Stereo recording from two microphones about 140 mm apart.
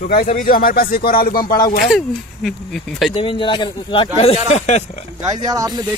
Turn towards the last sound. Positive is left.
turn(degrees=-30)  # may be behind; listen again after turning